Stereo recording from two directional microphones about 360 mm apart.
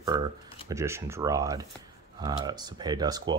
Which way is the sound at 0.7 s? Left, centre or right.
Centre.